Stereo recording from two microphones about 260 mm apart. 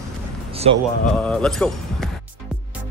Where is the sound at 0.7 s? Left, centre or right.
Right.